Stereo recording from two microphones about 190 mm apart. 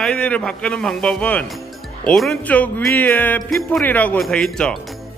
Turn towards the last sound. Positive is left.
turn(degrees=5)  # may be behind; listen again after turning